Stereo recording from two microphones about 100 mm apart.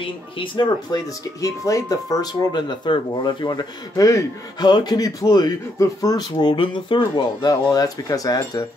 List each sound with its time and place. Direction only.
0.0 s speech: 55° left (ahead or behind)
1.4 s speech: 35° left (ahead or behind); by 3.6 s 50° left (ahead or behind)
3.9 s a man's voice: 35° left (ahead or behind)
6.3 s speech: 55° left (ahead or behind)